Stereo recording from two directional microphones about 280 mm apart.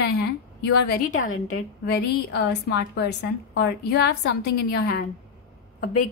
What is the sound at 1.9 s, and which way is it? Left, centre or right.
A woman's voice, left.